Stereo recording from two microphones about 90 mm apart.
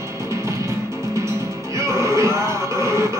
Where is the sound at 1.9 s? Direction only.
35° right (ahead or behind).